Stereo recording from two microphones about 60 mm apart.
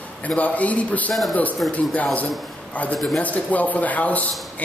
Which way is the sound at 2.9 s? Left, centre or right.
Centre.